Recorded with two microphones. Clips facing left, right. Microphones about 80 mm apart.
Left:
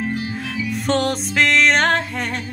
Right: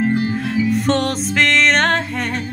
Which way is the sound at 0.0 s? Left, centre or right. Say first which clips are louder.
Right 7 dB; right.